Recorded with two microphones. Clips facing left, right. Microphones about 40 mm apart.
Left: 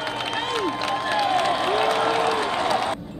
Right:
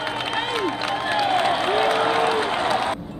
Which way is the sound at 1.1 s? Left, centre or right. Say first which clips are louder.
Right 1 dB; centre.